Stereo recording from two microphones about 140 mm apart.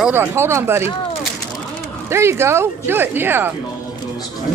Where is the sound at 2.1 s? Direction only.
20° right (ahead or behind).